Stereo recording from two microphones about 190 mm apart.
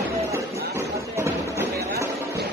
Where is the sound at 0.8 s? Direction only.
15° right (ahead or behind).